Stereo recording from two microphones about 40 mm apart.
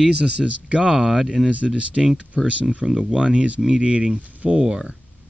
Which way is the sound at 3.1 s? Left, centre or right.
Right.